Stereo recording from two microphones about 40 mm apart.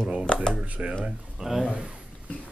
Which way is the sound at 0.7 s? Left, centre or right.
Right.